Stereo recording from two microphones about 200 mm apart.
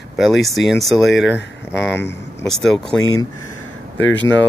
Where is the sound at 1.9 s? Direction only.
60° left (ahead or behind).